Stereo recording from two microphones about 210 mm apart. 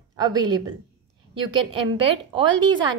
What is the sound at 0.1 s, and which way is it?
A woman's voice, 20° right (ahead or behind).